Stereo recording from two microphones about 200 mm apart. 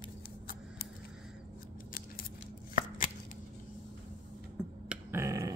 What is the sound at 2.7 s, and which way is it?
Chopping, 45° left (ahead or behind).